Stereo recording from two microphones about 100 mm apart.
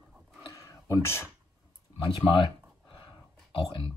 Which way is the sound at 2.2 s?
60° left (ahead or behind).